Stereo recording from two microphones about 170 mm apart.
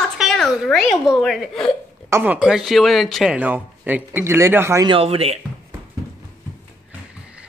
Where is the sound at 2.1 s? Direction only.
10° right (ahead or behind).